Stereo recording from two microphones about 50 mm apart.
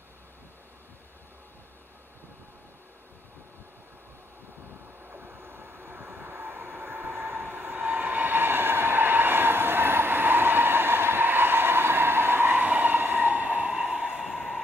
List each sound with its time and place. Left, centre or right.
5.1 s train: right
13.7 s train: centre